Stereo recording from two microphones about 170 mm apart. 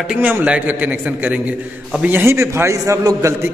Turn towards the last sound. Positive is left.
turn(degrees=-20)  # may be behind; listen again after turning